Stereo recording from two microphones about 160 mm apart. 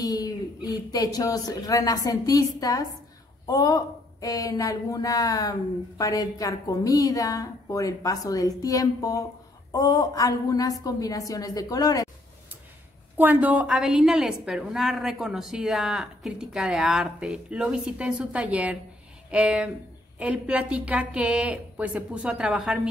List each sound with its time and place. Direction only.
0.0 s a woman's voice: 25° left (ahead or behind)
13.2 s a woman's voice: 10° right (ahead or behind)